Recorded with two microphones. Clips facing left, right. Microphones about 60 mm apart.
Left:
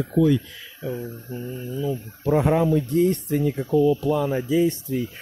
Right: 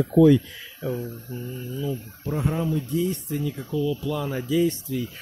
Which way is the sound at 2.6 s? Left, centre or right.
Left.